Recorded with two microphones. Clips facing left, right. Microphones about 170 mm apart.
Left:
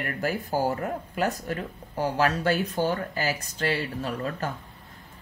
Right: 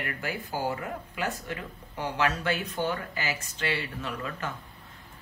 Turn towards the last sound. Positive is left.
turn(degrees=35)  # may be behind; listen again after turning